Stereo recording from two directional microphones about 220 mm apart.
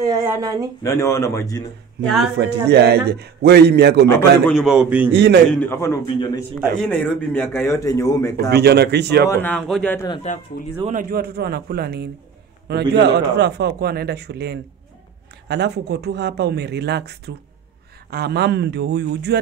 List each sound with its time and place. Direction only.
0.0 s speech: 15° right (ahead or behind)
0.8 s a man's voice: 15° left (ahead or behind)
2.3 s speech: 50° right (ahead or behind)
4.5 s a man's voice: centre (ahead or behind)
5.1 s speech: 55° right (ahead or behind)
5.5 s a man's voice: 10° left (ahead or behind)
6.8 s a man's voice: 5° left (ahead or behind)
8.5 s speech: 45° right (ahead or behind)
9.3 s a man's voice: 5° left (ahead or behind)
10.3 s speech: 35° left (ahead or behind)
10.9 s speech: 40° right (ahead or behind)